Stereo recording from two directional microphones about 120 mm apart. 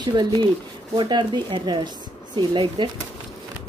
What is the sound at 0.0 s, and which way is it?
Speech, 35° right (ahead or behind).